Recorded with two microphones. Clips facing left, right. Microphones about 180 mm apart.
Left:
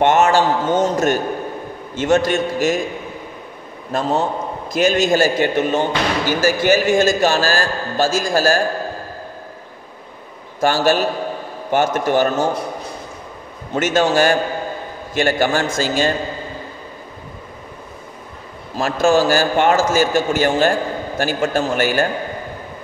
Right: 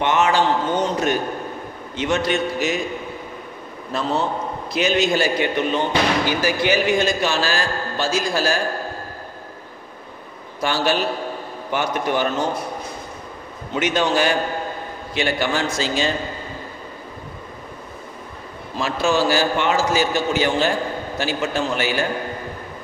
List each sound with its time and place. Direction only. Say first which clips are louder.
0.0 s a man's voice: left 4 dB; 45° left (ahead or behind)
3.9 s a man's voice: left 3 dB; 45° left (ahead or behind)
10.6 s a man's voice: left 5 dB; 45° left (ahead or behind)
13.7 s a man's voice: left 4 dB; 45° left (ahead or behind)
18.8 s a man's voice: left 5 dB; 45° left (ahead or behind)